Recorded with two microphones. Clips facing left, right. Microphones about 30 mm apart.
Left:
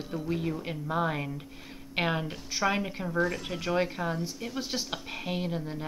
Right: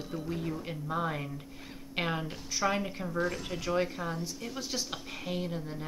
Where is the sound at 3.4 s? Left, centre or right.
Centre.